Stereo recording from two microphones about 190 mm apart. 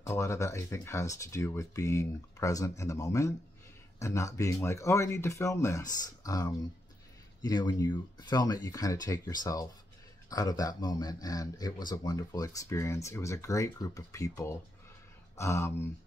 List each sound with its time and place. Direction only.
0.0 s speech: 15° left (ahead or behind)